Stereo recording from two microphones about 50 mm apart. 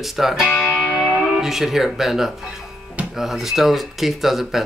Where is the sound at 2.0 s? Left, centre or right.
Centre.